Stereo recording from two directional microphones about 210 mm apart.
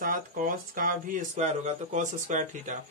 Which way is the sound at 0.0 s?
40° right (ahead or behind).